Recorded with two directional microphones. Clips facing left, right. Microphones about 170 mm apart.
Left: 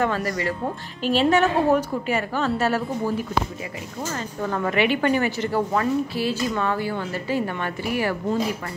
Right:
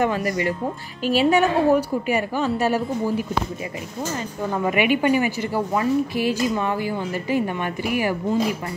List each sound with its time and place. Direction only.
0.0 s a woman's voice: 15° right (ahead or behind)
4.5 s a woman's voice: 10° right (ahead or behind)